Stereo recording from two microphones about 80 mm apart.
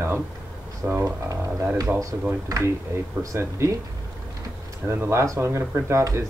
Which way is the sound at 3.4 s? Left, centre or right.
Right.